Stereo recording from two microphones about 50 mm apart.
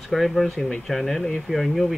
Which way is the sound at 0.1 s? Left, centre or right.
Centre.